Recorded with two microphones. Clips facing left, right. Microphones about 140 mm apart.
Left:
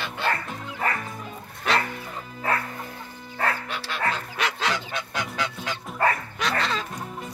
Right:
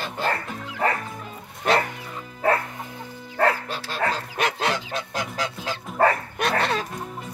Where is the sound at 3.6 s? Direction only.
35° right (ahead or behind).